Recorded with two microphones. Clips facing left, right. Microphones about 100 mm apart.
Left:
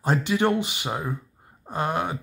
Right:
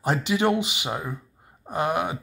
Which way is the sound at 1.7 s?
15° right (ahead or behind).